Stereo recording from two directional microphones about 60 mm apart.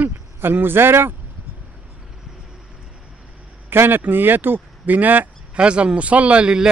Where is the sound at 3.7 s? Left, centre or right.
Right.